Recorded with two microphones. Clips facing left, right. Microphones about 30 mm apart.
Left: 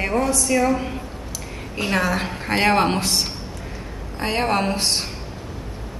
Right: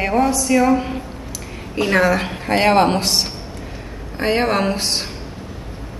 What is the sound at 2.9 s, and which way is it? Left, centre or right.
Speech, right.